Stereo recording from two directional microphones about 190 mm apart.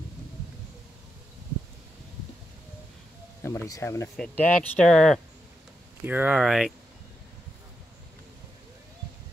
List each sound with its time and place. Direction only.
3.4 s speech: 15° left (ahead or behind)
4.2 s speech: 5° left (ahead or behind)
6.0 s speech: 10° right (ahead or behind)